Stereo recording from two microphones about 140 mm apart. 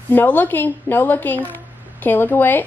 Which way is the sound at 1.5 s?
15° left (ahead or behind).